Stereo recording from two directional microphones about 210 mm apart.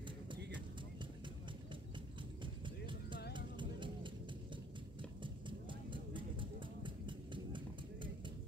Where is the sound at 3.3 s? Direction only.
20° right (ahead or behind).